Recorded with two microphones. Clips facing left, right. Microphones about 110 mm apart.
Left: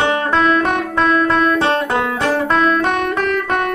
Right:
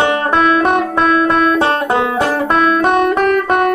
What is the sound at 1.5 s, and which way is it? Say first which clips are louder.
Banjo: right 2 dB; 45° right (ahead or behind).